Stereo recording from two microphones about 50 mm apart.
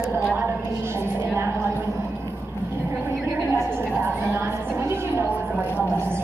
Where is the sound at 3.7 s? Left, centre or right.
Right.